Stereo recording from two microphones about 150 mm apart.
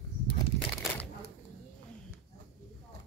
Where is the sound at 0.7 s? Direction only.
20° left (ahead or behind).